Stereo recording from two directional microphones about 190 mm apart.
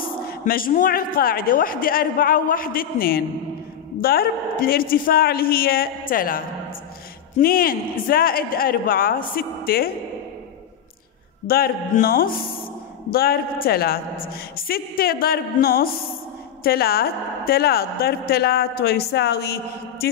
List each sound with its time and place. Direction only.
0.3 s a man's voice: 50° left (ahead or behind)
11.4 s a man's voice: 50° left (ahead or behind)